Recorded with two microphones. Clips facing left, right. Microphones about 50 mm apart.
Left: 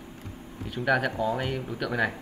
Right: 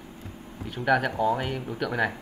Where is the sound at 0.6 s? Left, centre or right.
Centre.